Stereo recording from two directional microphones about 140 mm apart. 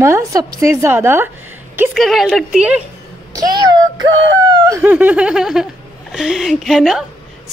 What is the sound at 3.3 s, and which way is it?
A woman's voice, 30° right (ahead or behind).